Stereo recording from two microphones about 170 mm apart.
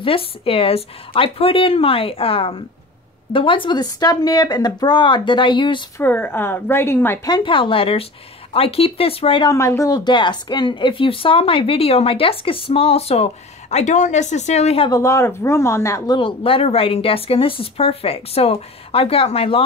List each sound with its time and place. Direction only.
0.0 s speech: 30° left (ahead or behind)
5.9 s a woman's voice: 10° left (ahead or behind)
7.3 s speech: 30° left (ahead or behind)
9.5 s speech: 15° left (ahead or behind); by 14.9 s 40° left (ahead or behind)
14.9 s a woman's voice: 20° left (ahead or behind)
16.2 s speech: 30° left (ahead or behind)